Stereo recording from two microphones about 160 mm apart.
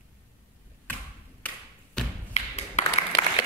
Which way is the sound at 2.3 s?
45° left (ahead or behind).